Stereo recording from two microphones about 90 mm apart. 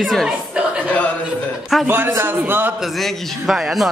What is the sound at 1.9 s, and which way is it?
Speech, 25° right (ahead or behind).